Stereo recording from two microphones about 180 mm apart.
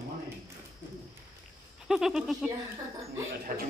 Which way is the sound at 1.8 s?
Centre (ahead or behind).